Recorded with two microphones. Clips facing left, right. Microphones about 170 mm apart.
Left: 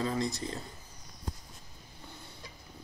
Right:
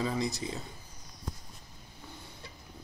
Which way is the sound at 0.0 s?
5° right (ahead or behind).